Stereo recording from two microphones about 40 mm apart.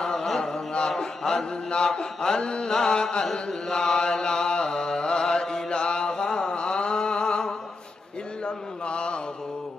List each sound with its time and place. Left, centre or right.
0.0 s chant: centre
8.5 s mantra: left